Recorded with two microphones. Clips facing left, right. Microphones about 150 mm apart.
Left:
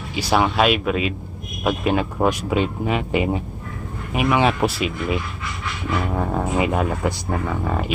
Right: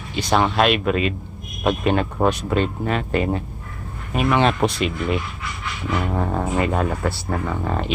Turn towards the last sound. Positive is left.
turn(degrees=5)  # may be behind; listen again after turning